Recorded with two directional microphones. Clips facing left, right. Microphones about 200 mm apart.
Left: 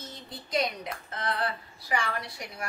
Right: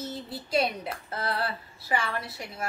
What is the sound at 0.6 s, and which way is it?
A woman's voice, 30° right (ahead or behind).